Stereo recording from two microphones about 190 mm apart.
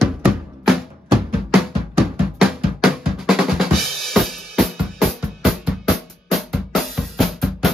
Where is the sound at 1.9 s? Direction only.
Centre (ahead or behind).